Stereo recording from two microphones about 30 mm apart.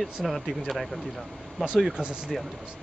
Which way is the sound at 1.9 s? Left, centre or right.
Right.